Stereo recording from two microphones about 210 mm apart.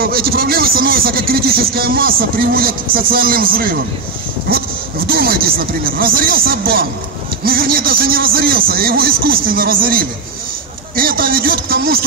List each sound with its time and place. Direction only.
0.0 s speech: 45° right (ahead or behind)